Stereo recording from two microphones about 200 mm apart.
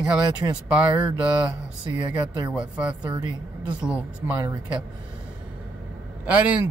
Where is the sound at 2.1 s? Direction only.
20° right (ahead or behind).